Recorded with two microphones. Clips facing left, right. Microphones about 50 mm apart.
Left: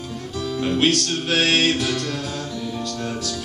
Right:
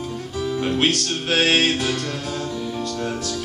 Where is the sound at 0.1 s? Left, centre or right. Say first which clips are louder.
Even; centre.